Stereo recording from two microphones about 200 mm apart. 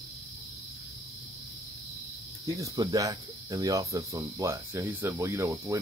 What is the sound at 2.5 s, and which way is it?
Cricket, 15° right (ahead or behind).